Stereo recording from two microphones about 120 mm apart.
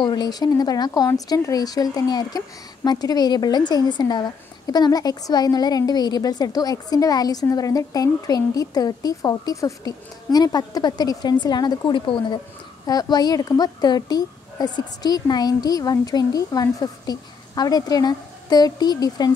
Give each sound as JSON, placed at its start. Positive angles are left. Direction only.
{"t": 0.0, "sound": "speech", "side_deg": 35}